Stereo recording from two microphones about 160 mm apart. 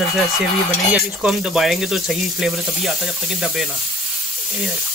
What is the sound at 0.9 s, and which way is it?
Speech, 5° right (ahead or behind).